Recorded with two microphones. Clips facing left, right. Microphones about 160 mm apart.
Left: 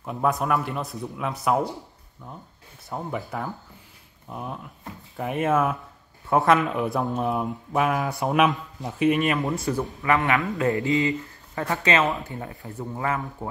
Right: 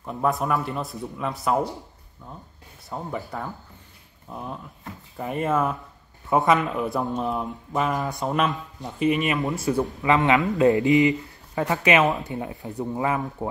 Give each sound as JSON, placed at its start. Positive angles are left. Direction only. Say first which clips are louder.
{"t": 0.0, "sound": "speech", "louder": "even", "side_deg": 0}
{"t": 2.9, "sound": "speech", "louder": "left 1 dB", "side_deg": 0}
{"t": 10.0, "sound": "a man's voice", "louder": "right 3 dB", "side_deg": -20}